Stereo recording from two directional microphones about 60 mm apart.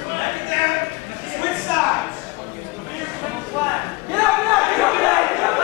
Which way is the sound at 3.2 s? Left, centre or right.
Centre.